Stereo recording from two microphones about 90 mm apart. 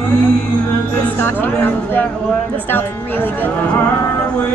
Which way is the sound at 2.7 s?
25° left (ahead or behind).